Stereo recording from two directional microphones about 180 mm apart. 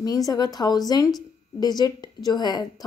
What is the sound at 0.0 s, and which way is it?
A woman's voice, 20° left (ahead or behind).